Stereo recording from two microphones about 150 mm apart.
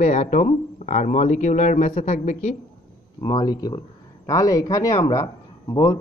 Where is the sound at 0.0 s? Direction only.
55° left (ahead or behind).